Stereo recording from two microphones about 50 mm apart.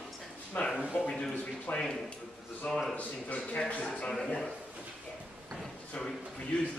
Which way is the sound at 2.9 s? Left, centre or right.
Left.